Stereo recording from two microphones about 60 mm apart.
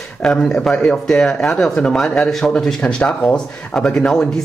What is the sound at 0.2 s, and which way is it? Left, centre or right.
Speech, centre.